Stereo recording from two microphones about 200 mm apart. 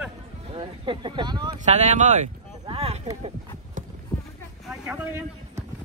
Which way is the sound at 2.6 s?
30° right (ahead or behind).